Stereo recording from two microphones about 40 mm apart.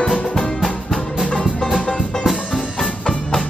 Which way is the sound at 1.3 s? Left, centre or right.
Centre.